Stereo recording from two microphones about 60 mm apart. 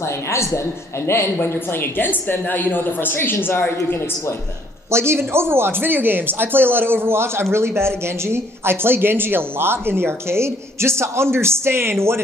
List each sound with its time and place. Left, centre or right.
0.0 s a woman's voice: left
4.9 s speech: right